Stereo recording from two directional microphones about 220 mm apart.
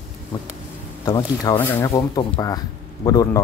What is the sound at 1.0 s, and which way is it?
Speech, 20° left (ahead or behind).